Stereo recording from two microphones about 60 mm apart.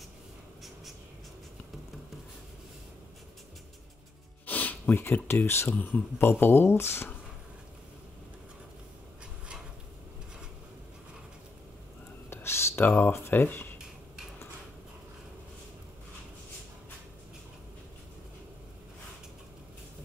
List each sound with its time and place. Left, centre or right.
4.5 s speech: left
5.7 s speech: left
6.4 s speech: left
12.3 s a sound: left